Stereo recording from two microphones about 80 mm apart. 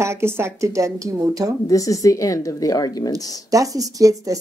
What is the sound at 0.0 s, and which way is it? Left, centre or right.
A woman's voice, right.